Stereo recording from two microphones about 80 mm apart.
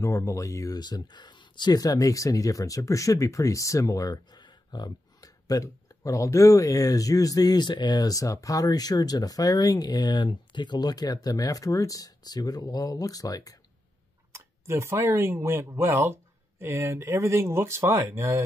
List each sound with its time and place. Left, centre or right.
0.0 s speech: left
0.7 s speech: left
14.3 s speech: right